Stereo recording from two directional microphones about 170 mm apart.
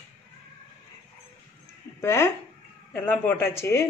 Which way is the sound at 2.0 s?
15° left (ahead or behind).